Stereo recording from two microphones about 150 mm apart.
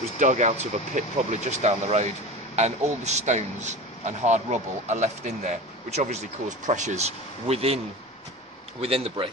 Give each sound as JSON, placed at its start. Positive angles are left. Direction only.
{"t": 0.2, "sound": "speech", "side_deg": -50}
{"t": 8.8, "sound": "speech", "side_deg": -40}